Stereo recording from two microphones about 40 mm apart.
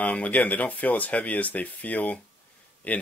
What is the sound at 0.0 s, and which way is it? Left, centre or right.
Speech, left.